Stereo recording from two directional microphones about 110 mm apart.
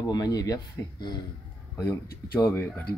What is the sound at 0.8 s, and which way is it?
Speech, 25° left (ahead or behind).